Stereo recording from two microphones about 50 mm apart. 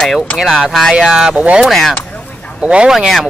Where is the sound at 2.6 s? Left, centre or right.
Right.